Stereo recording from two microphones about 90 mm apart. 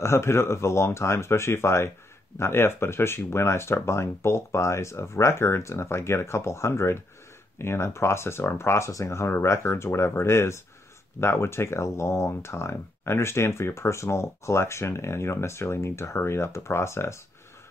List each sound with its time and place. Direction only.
0.0 s speech: 30° left (ahead or behind)